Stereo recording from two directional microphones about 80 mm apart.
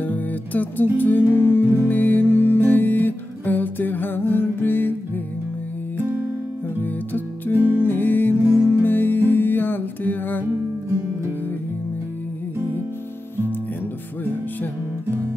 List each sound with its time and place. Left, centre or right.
0.0 s music: left
6.8 s music: left